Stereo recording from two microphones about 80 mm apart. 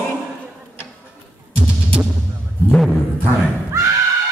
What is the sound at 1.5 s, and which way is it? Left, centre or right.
Music, centre.